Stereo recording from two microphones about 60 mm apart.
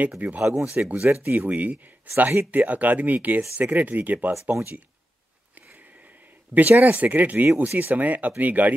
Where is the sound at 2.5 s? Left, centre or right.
Right.